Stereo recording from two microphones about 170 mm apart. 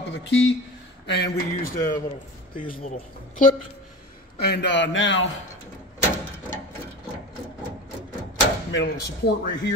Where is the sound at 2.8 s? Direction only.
40° left (ahead or behind).